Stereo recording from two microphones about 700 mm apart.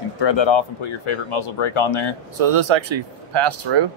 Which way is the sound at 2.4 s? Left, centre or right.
Right.